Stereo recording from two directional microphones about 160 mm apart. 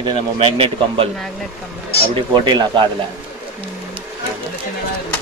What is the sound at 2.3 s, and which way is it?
Speech, 30° right (ahead or behind).